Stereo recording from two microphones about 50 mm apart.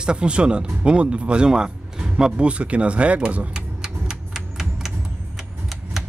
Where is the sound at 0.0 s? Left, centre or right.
Centre.